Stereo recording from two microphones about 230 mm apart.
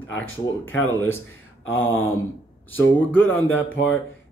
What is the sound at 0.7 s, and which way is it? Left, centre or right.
Speech, centre.